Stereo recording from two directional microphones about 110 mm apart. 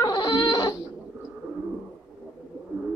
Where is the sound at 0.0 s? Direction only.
40° left (ahead or behind).